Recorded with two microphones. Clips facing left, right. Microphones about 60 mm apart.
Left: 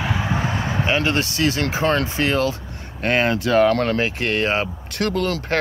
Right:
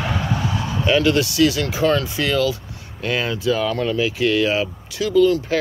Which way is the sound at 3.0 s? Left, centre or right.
Left.